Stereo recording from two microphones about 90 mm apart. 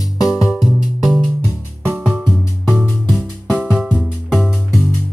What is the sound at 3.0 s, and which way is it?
Music, 10° right (ahead or behind).